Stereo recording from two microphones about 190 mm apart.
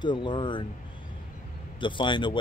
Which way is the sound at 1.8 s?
25° left (ahead or behind).